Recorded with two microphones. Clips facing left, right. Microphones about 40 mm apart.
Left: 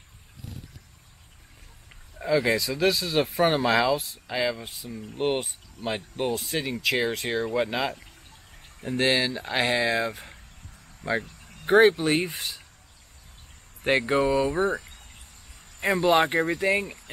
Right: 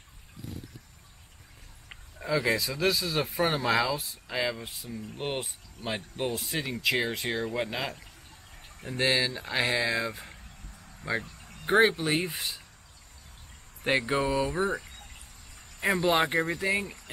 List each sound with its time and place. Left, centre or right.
2.1 s speech: centre
2.5 s speech: centre
3.3 s speech: centre
5.0 s speech: left
5.4 s speech: centre
5.9 s speech: centre
8.9 s speech: centre
11.4 s speech: centre
13.8 s speech: centre